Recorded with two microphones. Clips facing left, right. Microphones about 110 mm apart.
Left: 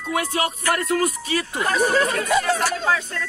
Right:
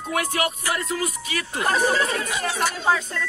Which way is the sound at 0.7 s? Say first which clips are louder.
Left 5 dB; 50° left (ahead or behind).